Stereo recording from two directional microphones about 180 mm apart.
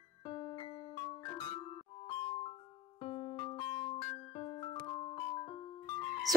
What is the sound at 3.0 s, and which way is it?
Keyboard, 35° left (ahead or behind).